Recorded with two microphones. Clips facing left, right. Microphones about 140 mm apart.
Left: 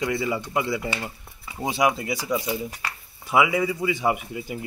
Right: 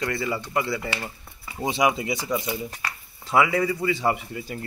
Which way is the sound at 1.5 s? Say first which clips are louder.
Even; 5° left (ahead or behind).